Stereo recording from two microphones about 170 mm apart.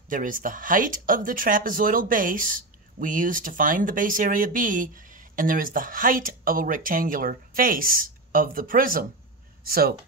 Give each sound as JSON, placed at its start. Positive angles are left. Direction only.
{"t": 0.1, "sound": "speech", "side_deg": -55}